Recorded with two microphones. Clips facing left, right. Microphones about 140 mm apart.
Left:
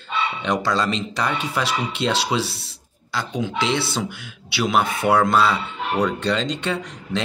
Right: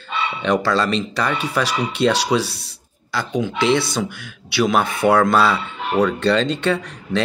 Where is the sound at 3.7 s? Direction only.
25° left (ahead or behind).